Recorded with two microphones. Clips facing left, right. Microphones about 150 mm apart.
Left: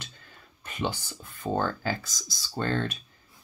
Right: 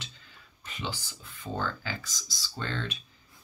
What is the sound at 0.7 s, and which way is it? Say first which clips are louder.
Speech: left 6 dB; 50° left (ahead or behind).